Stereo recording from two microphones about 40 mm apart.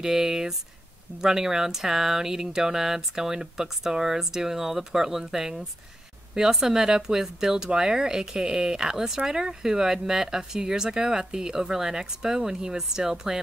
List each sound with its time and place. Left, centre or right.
0.0 s speech: centre